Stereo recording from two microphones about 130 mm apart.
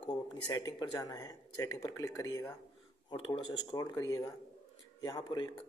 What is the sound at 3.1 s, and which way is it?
Speech, 40° left (ahead or behind).